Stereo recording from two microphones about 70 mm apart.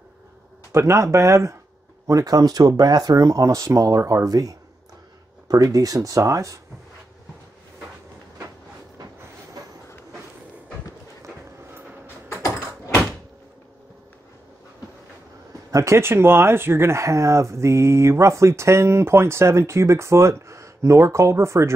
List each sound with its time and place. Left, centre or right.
0.7 s speech: right
2.0 s speech: right
8.9 s train: right
12.4 s a sound: left
15.7 s speech: right